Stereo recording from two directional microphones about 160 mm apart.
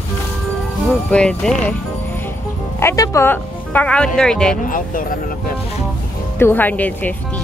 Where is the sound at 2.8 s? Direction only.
15° left (ahead or behind).